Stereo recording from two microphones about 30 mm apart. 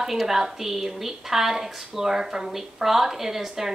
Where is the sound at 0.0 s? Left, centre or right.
Centre.